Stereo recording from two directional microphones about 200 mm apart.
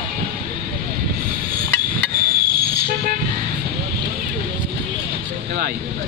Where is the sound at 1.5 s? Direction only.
45° right (ahead or behind).